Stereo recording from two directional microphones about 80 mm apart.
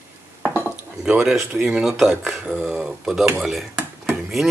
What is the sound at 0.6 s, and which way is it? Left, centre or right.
Dishes, right.